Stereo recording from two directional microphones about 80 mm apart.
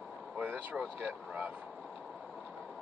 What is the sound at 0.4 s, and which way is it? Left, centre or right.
Speech, centre.